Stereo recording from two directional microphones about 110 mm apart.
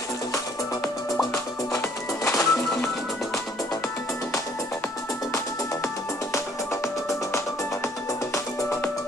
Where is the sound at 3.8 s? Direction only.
25° left (ahead or behind).